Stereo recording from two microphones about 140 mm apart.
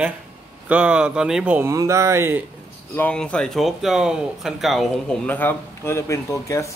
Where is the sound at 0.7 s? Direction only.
10° right (ahead or behind).